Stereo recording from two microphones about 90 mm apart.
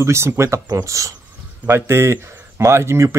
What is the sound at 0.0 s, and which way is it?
Speech, 30° right (ahead or behind).